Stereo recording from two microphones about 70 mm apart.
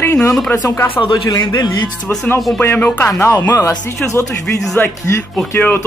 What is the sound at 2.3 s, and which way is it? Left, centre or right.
Speech, left.